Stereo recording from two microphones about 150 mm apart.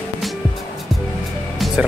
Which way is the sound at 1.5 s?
Centre (ahead or behind).